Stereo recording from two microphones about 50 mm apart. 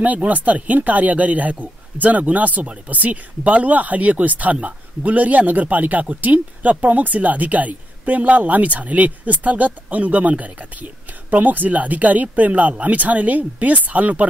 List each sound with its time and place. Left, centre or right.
0.0 s speech: right